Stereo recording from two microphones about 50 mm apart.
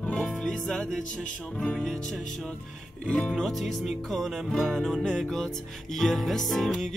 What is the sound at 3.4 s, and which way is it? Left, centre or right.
Music, centre.